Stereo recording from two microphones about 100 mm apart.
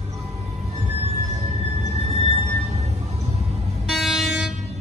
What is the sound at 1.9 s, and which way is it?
Music, 90° right.